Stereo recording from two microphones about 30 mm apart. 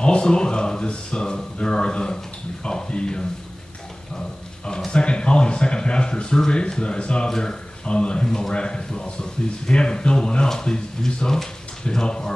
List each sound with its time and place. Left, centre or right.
0.0 s speech: left
4.6 s speech: left
7.2 s speech: left
7.9 s speech: left